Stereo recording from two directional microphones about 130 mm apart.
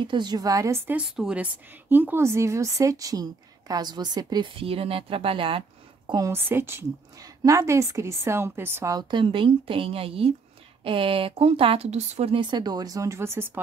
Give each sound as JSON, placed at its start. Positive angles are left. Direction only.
{"t": 0.0, "sound": "a woman's voice", "side_deg": -35}
{"t": 1.0, "sound": "a woman's voice", "side_deg": -5}
{"t": 4.6, "sound": "speech", "side_deg": -45}
{"t": 6.0, "sound": "a woman's voice", "side_deg": -30}
{"t": 6.3, "sound": "a woman's voice", "side_deg": -15}
{"t": 8.9, "sound": "speech", "side_deg": -40}
{"t": 12.4, "sound": "a woman's voice", "side_deg": -35}